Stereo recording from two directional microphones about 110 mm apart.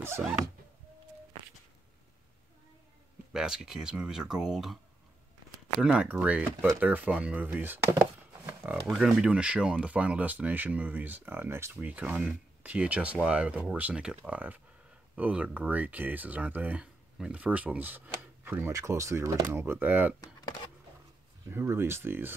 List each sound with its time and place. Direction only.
3.3 s speech: 5° right (ahead or behind)
5.8 s speech: 10° right (ahead or behind)
8.9 s speech: 10° right (ahead or behind)
20.2 s a sound: 35° left (ahead or behind)
21.5 s speech: 20° right (ahead or behind)